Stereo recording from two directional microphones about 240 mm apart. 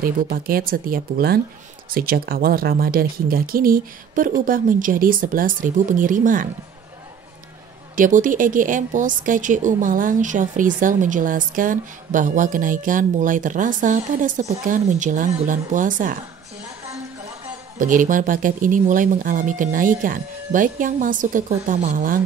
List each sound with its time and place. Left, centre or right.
0.0 s a woman's voice: right
7.9 s a woman's voice: right
17.7 s a woman's voice: right